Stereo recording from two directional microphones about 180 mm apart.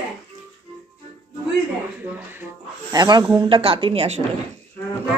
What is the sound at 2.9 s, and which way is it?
Speech, 20° right (ahead or behind).